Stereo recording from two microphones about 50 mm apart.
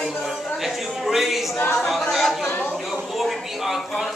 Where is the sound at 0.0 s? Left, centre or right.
Centre.